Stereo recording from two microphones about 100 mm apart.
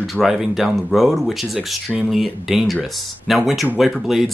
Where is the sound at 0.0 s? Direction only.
Centre (ahead or behind).